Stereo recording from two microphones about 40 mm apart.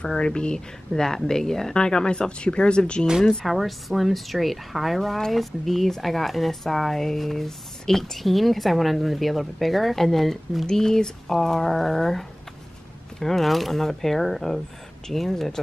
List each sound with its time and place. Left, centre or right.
0.0 s speech: left
3.4 s speech: centre
10.7 s speech: centre